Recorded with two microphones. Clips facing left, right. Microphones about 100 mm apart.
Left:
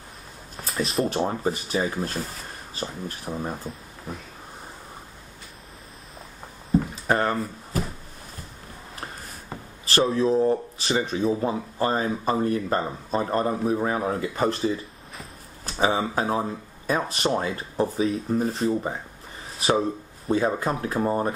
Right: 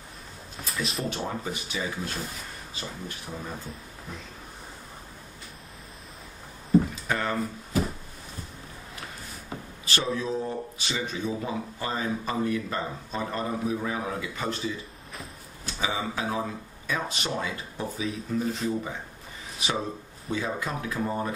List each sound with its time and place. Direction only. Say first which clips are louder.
0.7 s a sound: left 4 dB; 35° left (ahead or behind)
1.1 s speech: left 7 dB; 40° left (ahead or behind)
7.1 s speech: left 5 dB; 40° left (ahead or behind)
8.9 s speech: left 4 dB; 40° left (ahead or behind)
20.2 s speech: left 7 dB; 40° left (ahead or behind)